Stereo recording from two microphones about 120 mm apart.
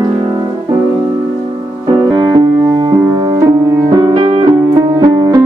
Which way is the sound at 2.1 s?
40° right (ahead or behind).